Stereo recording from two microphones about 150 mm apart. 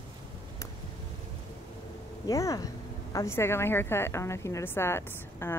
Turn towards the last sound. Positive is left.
turn(degrees=15)  # may be behind; listen again after turning